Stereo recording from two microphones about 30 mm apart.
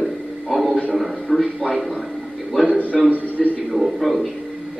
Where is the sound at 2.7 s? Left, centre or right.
Left.